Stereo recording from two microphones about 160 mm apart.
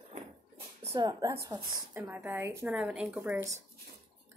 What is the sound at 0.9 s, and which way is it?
A woman's voice, 25° right (ahead or behind).